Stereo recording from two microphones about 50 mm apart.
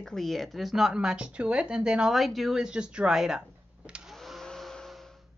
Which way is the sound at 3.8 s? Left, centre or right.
Right.